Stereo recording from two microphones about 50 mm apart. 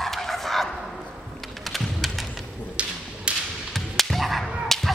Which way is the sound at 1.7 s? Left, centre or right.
Centre.